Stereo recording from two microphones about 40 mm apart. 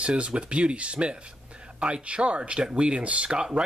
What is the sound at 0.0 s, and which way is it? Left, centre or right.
Speech, right.